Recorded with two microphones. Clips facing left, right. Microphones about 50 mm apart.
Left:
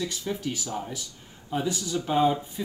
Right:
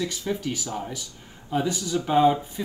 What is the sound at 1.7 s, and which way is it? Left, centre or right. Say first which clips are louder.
Speech: right 3 dB; right.